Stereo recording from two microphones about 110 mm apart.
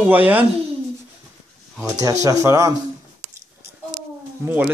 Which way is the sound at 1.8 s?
30° right (ahead or behind).